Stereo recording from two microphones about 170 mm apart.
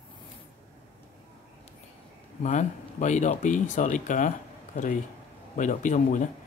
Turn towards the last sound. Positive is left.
turn(degrees=45)  # may be behind; listen again after turning